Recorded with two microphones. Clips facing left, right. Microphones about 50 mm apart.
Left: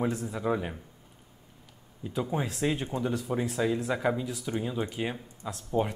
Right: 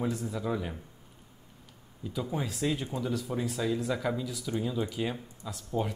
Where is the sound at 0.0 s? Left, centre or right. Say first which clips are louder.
Left 2 dB; left.